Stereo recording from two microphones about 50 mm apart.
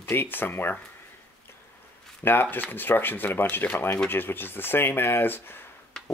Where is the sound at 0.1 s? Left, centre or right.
Left.